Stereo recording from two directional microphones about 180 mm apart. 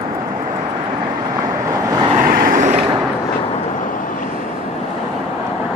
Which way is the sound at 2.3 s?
50° right (ahead or behind).